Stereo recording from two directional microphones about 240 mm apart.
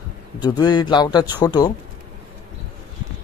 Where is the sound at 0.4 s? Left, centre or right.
Centre.